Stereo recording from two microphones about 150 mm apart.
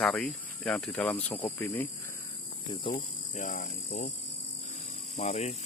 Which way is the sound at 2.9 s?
50° left (ahead or behind).